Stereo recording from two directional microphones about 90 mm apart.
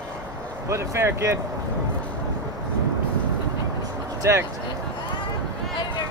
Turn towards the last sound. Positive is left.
turn(degrees=-35)  # may be behind; listen again after turning